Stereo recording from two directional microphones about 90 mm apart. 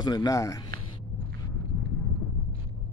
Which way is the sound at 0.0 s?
50° left (ahead or behind).